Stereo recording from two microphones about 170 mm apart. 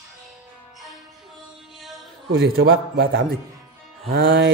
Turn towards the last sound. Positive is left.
turn(degrees=-60)  # may be behind; listen again after turning